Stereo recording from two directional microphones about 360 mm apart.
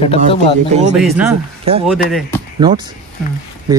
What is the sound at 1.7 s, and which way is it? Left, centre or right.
Speech, centre.